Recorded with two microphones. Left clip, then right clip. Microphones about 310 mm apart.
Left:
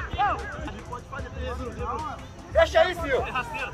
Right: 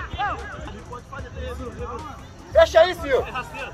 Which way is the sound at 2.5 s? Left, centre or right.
Centre.